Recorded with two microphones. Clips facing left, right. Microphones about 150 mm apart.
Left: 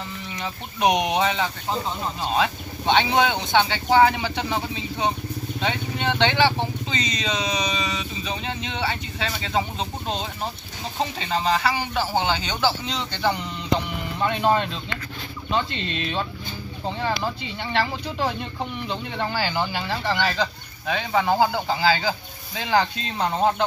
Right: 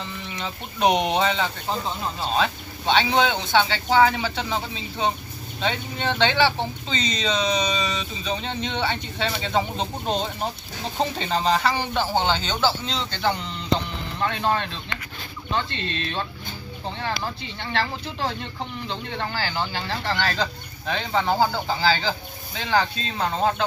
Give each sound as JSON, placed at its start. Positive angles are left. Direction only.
{"t": 0.4, "sound": "speech", "side_deg": 15}
{"t": 5.6, "sound": "speech", "side_deg": 15}
{"t": 11.1, "sound": "speech", "side_deg": 5}